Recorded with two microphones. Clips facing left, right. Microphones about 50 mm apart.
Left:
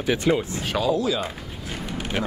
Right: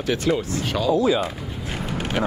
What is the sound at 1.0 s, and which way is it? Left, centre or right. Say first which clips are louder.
Speech: right 5 dB; right.